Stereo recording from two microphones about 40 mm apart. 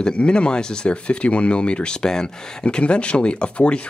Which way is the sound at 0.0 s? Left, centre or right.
Left.